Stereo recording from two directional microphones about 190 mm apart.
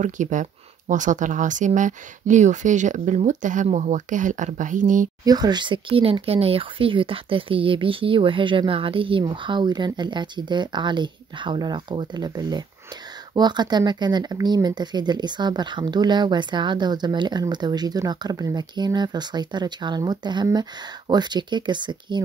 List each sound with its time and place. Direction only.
0.0 s speech: 40° right (ahead or behind)
5.2 s speech: 20° right (ahead or behind)